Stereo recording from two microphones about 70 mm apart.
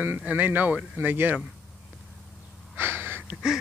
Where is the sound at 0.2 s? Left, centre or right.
Right.